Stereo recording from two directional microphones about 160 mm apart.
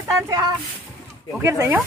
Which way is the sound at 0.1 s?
25° right (ahead or behind).